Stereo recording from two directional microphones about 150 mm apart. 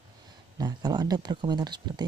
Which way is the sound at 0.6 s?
25° right (ahead or behind).